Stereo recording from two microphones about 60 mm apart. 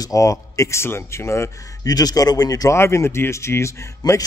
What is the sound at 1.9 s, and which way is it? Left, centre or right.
Speech, left.